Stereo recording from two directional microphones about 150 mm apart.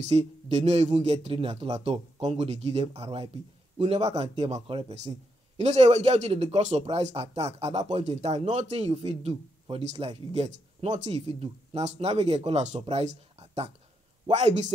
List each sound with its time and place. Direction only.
0.1 s a man's voice: 45° right (ahead or behind)